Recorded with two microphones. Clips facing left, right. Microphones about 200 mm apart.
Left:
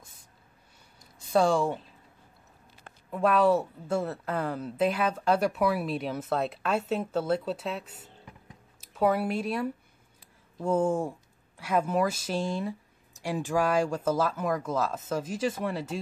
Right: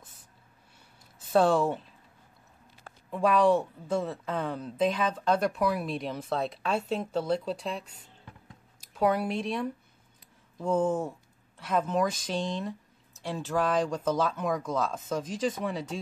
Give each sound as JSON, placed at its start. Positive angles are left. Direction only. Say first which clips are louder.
{"t": 1.2, "sound": "speech", "louder": "right 1 dB", "side_deg": 0}
{"t": 3.1, "sound": "a woman's voice", "louder": "even", "side_deg": 5}